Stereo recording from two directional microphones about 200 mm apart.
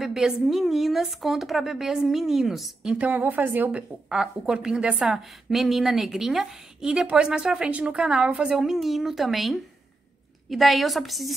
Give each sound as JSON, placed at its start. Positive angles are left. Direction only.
{"t": 0.0, "sound": "a woman's voice", "side_deg": 0}